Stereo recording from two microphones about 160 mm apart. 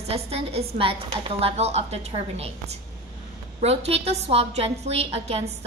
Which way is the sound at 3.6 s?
40° right (ahead or behind).